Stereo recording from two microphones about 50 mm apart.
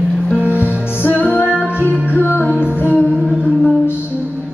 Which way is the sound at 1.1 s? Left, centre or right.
Left.